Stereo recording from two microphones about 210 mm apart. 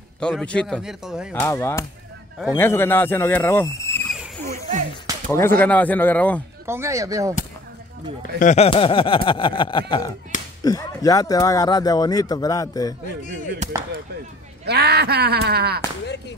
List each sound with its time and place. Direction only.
0.2 s speech: 5° left (ahead or behind)
1.3 s speech: 10° left (ahead or behind)
4.5 s speech: 35° right (ahead or behind)
5.3 s speech: 10° left (ahead or behind)
6.6 s speech: 10° right (ahead or behind)
8.4 s a sound: 35° left (ahead or behind)
10.6 s speech: 15° left (ahead or behind)
14.6 s speech: 50° right (ahead or behind)